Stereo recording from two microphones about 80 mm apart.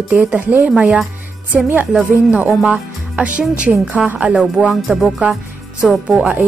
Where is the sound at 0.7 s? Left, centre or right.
Centre.